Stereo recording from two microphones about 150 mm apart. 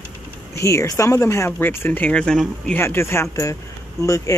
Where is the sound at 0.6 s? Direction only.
20° left (ahead or behind).